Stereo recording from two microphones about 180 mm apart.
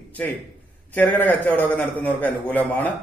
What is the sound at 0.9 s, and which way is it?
A man's voice, 10° left (ahead or behind).